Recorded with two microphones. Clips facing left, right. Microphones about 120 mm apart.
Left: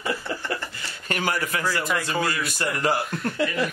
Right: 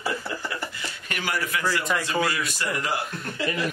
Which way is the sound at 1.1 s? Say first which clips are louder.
Left 3 dB; 40° left (ahead or behind).